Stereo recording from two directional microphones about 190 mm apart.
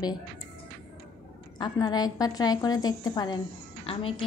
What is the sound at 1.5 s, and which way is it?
A woman's voice, 20° left (ahead or behind).